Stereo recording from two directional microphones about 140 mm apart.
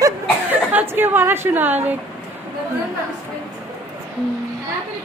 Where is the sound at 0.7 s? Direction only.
15° right (ahead or behind).